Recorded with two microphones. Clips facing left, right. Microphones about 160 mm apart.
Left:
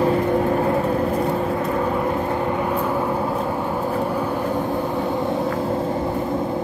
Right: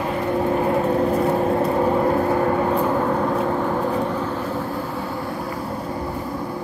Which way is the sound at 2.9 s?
10° left (ahead or behind).